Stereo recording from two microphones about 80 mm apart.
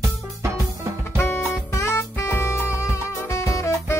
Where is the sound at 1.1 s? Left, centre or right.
Left.